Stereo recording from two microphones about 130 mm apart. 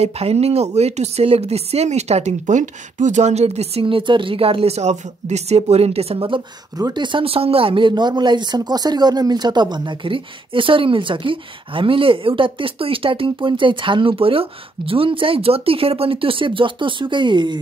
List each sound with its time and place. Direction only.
0.0 s speech: 50° right (ahead or behind); by 17.6 s 35° right (ahead or behind)